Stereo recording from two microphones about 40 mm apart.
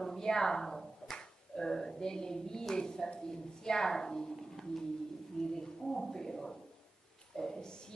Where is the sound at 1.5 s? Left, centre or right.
Centre.